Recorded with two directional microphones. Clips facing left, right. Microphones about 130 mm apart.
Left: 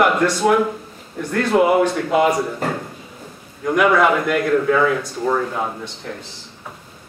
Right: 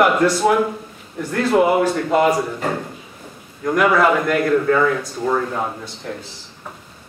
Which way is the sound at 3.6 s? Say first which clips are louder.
Even; centre (ahead or behind).